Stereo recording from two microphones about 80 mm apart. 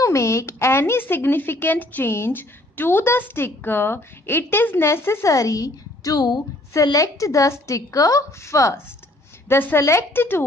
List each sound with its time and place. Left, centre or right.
0.0 s speech: left
6.7 s a woman's voice: left
9.5 s speech: left
9.8 s a woman's voice: left